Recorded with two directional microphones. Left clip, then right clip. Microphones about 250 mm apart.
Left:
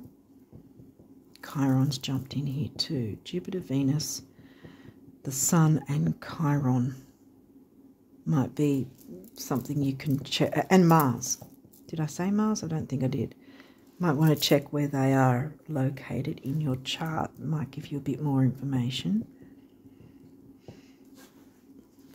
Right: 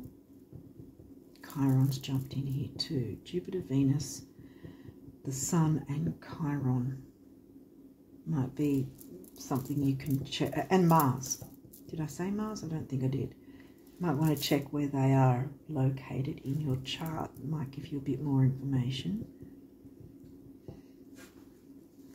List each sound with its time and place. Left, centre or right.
1.4 s speech: left
5.2 s speech: left
8.3 s speech: left